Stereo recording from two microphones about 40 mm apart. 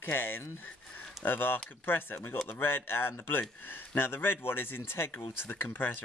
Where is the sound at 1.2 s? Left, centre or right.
Left.